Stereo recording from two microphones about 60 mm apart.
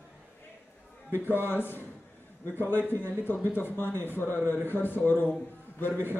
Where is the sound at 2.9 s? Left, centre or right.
Left.